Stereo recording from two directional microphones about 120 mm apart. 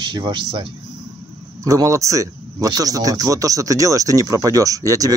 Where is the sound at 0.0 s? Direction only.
40° right (ahead or behind).